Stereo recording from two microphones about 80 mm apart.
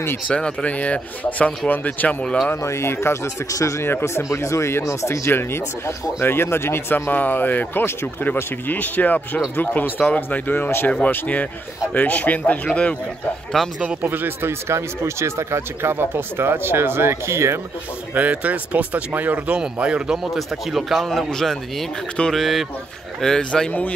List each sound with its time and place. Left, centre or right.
0.3 s speech: centre
2.5 s speech: left; by 12.9 s centre
13.7 s speech: right
18.1 s speech: centre